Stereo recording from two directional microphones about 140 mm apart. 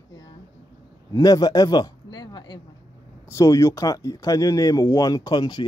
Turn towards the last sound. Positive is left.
turn(degrees=30)  # may be behind; listen again after turning